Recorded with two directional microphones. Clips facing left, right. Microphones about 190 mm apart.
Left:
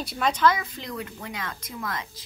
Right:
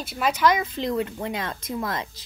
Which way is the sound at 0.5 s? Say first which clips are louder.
Right 9 dB; 25° right (ahead or behind).